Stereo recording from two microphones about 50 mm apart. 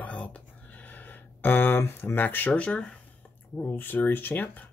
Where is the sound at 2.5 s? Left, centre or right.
Left.